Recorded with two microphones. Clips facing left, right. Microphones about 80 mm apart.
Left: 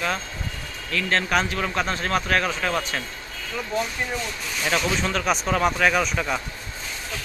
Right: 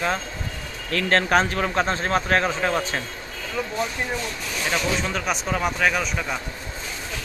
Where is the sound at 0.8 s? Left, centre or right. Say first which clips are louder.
Right 3 dB; right.